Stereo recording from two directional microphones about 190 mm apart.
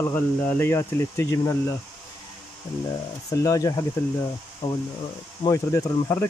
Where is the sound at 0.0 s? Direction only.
10° left (ahead or behind).